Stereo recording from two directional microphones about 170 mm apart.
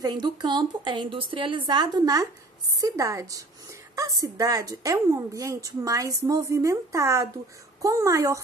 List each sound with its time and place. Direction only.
0.0 s a woman's voice: 25° right (ahead or behind)